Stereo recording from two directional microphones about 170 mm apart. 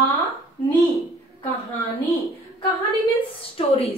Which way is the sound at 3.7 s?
40° left (ahead or behind).